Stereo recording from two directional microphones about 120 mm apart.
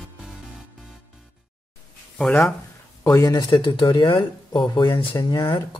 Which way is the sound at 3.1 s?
30° left (ahead or behind).